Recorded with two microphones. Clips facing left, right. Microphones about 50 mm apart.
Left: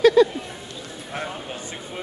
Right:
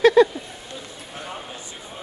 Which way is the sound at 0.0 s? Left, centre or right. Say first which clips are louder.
Even; right.